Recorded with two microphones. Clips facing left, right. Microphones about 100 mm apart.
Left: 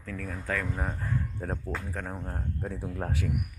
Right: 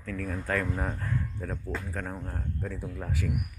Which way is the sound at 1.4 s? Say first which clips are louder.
Left 2 dB; 40° left (ahead or behind).